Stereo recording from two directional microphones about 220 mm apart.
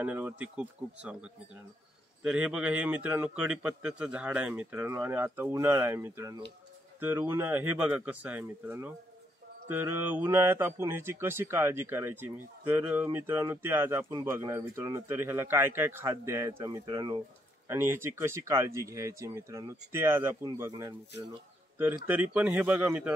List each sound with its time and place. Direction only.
0.0 s speech: 5° right (ahead or behind)